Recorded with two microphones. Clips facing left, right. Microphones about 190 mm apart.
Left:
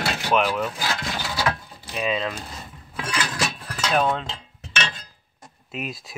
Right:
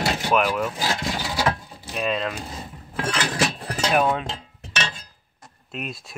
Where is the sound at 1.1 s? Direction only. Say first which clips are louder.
Right 2 dB; 15° right (ahead or behind).